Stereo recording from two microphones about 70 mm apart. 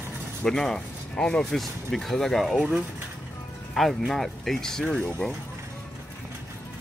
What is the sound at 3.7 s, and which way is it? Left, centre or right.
Speech, centre.